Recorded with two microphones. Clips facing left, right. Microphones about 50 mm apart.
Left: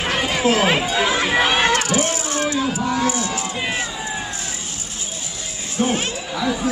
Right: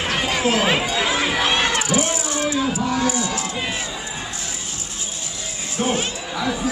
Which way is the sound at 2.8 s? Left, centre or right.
Centre.